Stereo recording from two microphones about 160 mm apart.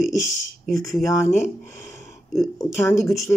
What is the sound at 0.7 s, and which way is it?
Speech, centre (ahead or behind).